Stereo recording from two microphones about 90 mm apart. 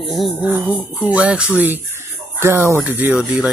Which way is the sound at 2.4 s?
30° right (ahead or behind).